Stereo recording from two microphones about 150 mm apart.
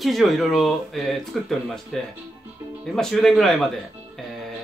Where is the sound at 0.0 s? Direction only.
Centre (ahead or behind).